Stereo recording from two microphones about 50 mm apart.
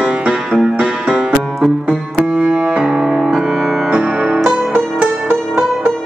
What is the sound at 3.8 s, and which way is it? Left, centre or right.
Music, right.